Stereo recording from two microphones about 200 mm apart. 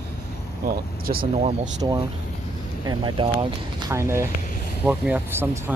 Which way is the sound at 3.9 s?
15° right (ahead or behind).